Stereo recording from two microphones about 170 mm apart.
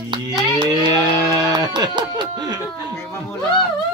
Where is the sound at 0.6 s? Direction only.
25° right (ahead or behind).